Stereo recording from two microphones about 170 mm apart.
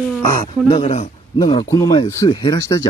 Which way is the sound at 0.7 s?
35° left (ahead or behind).